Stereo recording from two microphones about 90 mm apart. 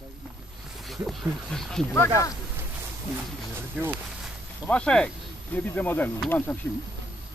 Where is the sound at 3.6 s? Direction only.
20° right (ahead or behind).